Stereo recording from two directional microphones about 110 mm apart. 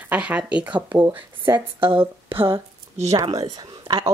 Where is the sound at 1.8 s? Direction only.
55° right (ahead or behind).